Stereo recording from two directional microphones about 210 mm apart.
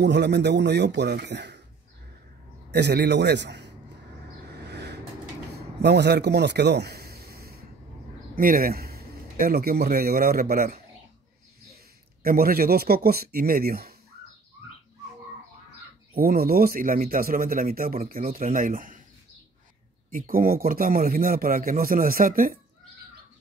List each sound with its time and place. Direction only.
0.0 s speech: 55° right (ahead or behind)
2.7 s a man's voice: 50° right (ahead or behind)
4.5 s vehicle: 55° right (ahead or behind)
5.5 s a sound: 50° right (ahead or behind)
8.4 s a man's voice: 45° right (ahead or behind)
16.2 s speech: 45° right (ahead or behind)
20.1 s speech: 40° right (ahead or behind)